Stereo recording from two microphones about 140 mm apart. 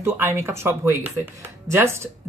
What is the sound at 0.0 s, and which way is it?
A woman's voice, 15° right (ahead or behind).